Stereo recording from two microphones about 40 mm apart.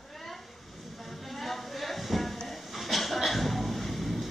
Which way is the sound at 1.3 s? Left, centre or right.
Centre.